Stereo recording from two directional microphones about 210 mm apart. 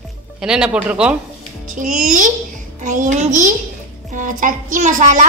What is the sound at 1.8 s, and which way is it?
A woman's voice, 35° right (ahead or behind).